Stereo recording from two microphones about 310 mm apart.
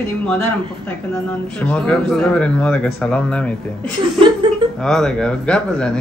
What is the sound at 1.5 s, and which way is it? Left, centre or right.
A man's voice, centre.